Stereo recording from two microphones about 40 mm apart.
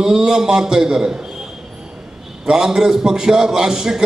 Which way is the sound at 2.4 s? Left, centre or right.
Centre.